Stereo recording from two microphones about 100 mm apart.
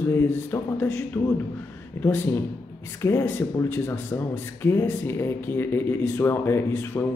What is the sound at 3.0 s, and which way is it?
Speech, 25° left (ahead or behind).